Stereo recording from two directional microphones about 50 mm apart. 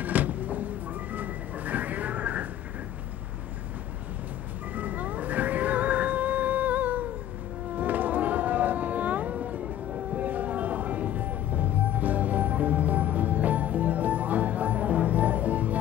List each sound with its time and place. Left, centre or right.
0.0 s a sound: right
4.7 s music: right
7.7 s cat: right
10.1 s music: right